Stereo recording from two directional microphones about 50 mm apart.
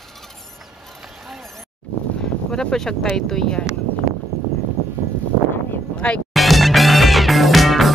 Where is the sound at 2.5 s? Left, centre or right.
Centre.